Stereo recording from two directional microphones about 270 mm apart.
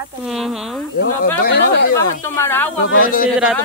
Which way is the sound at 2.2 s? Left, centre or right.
Centre.